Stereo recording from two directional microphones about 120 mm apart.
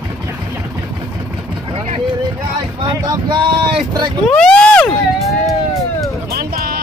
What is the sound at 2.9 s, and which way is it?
Speech, 35° right (ahead or behind).